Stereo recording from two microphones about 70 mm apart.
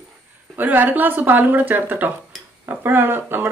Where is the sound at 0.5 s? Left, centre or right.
Right.